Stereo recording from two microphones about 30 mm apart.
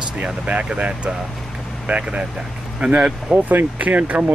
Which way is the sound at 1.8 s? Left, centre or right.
Right.